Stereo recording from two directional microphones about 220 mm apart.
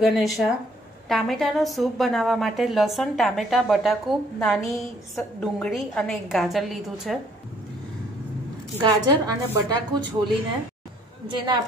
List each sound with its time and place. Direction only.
0.0 s a woman's voice: centre (ahead or behind)
8.8 s a woman's voice: 15° right (ahead or behind)